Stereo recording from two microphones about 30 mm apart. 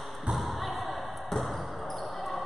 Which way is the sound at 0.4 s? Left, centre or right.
Centre.